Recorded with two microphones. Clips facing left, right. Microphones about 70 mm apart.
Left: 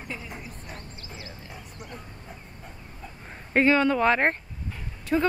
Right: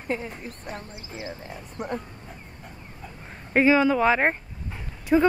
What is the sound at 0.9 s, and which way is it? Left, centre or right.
Speech, centre.